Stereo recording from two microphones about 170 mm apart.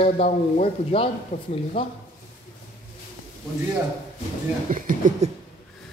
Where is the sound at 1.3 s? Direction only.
55° left (ahead or behind).